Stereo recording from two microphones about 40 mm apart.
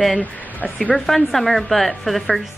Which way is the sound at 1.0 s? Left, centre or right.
Centre.